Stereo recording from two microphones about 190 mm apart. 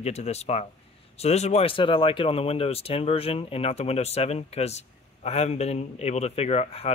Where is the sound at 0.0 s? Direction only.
35° left (ahead or behind).